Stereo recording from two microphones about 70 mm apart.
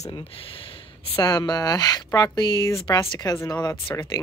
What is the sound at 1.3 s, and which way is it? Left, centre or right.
Speech, left.